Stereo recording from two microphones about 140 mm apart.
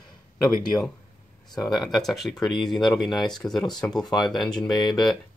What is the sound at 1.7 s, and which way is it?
Speech, centre (ahead or behind).